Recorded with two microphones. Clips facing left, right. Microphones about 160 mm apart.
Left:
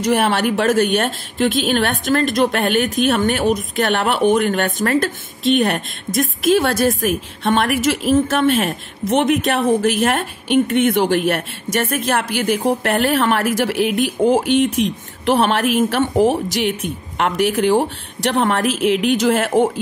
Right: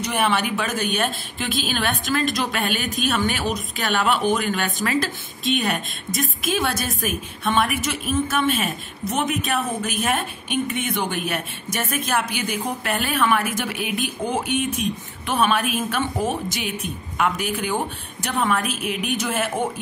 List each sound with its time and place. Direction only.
0.1 s a woman's voice: 60° left (ahead or behind)
7.6 s a woman's voice: 75° left (ahead or behind); by 19.6 s 90° left